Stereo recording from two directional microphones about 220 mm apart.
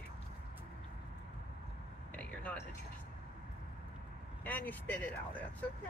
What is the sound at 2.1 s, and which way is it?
Vehicle, 5° left (ahead or behind).